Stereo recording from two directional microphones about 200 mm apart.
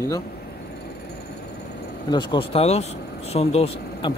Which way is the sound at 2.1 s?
20° left (ahead or behind).